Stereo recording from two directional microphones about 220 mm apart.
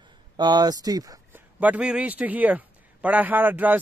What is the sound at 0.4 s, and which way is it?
Speech, 20° right (ahead or behind).